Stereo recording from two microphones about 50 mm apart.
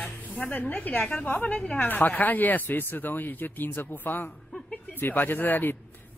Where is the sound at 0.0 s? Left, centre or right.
Left.